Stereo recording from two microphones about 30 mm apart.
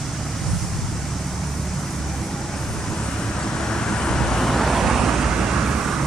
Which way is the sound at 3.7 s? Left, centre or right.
Left.